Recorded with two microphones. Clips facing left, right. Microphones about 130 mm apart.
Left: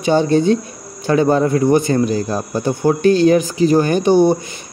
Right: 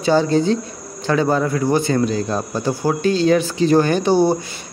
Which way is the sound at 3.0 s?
55° left (ahead or behind).